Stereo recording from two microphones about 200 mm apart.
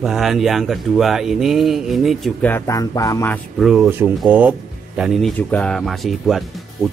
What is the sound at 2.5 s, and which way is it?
Music, 15° left (ahead or behind).